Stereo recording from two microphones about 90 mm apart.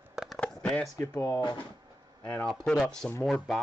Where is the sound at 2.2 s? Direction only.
20° left (ahead or behind).